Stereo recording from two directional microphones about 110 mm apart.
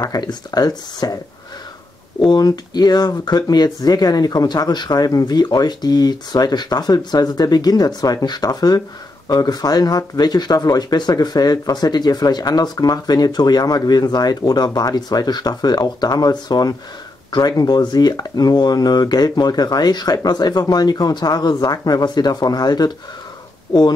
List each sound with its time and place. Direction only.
0.0 s speech: 40° left (ahead or behind)
2.1 s speech: 40° left (ahead or behind)